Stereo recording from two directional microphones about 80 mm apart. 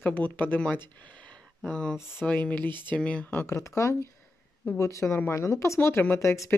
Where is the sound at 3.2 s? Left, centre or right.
Left.